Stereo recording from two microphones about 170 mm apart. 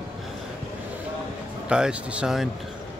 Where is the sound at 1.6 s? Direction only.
5° right (ahead or behind).